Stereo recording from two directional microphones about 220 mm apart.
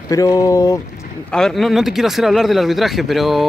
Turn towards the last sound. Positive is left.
turn(degrees=0)  # may be behind; listen again after turning